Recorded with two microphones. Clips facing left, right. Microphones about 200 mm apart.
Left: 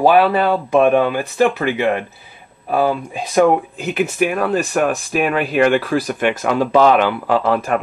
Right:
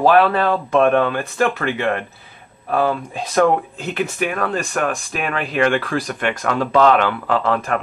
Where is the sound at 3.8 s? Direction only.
5° left (ahead or behind).